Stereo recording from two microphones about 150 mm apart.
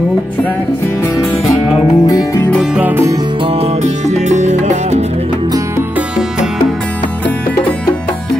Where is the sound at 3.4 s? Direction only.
45° right (ahead or behind).